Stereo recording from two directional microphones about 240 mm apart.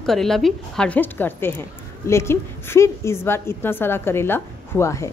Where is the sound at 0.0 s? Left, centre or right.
Centre.